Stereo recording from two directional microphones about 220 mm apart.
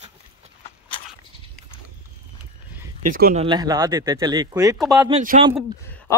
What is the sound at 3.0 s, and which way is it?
Speech, 40° right (ahead or behind).